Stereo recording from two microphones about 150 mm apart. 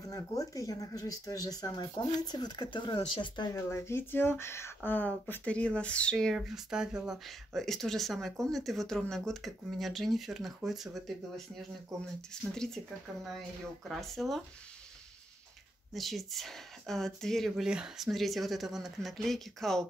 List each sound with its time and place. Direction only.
0.0 s speech: 20° left (ahead or behind)
3.5 s speech: 15° left (ahead or behind); by 11.4 s centre (ahead or behind)
12.5 s speech: 5° left (ahead or behind)
15.9 s speech: centre (ahead or behind)